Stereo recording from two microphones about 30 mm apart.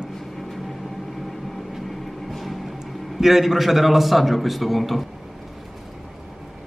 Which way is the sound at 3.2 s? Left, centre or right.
Centre.